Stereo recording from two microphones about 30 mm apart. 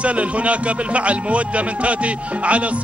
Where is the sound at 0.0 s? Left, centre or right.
Right.